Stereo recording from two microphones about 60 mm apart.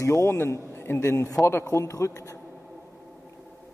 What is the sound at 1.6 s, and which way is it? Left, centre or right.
Speech, left.